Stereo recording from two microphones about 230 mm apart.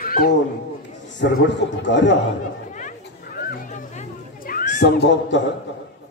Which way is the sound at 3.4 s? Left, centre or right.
Left.